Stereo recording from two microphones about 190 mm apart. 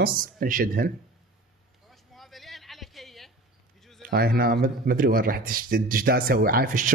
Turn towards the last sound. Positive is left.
turn(degrees=-50)  # may be behind; listen again after turning